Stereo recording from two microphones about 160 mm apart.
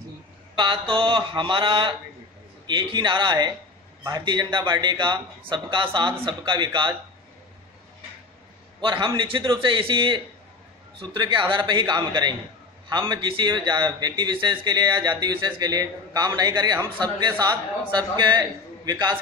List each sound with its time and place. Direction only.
0.6 s a man's voice: 30° right (ahead or behind)
8.8 s a man's voice: 30° right (ahead or behind)